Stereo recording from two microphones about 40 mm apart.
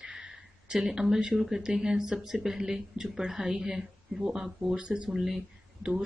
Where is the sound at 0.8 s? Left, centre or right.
Centre.